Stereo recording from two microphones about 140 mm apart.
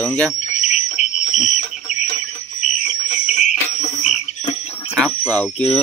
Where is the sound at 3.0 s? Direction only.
55° left (ahead or behind).